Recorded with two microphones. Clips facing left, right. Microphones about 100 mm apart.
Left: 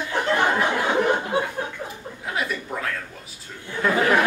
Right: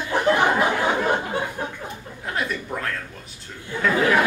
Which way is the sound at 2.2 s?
Centre (ahead or behind).